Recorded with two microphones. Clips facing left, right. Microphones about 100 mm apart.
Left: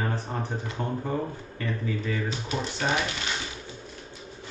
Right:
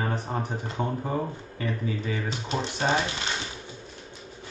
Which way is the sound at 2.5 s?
25° right (ahead or behind).